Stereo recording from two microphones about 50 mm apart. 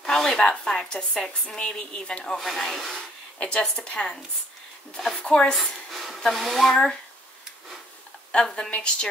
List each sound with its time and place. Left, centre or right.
0.0 s zipper: centre
0.5 s a woman's voice: centre
2.3 s speech: centre
3.3 s a woman's voice: left
5.2 s a woman's voice: left
5.9 s a sound: centre
6.1 s a sound: centre
6.4 s speech: centre
6.7 s a woman's voice: centre
8.3 s a woman's voice: centre